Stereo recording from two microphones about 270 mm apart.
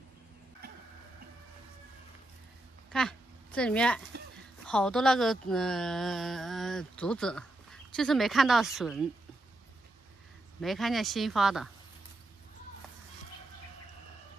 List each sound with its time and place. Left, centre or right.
2.9 s a woman's voice: centre
10.6 s a woman's voice: centre